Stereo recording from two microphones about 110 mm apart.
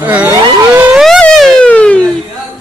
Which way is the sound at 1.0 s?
5° left (ahead or behind).